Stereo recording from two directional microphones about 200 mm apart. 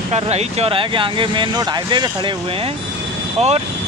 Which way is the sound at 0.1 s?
30° right (ahead or behind).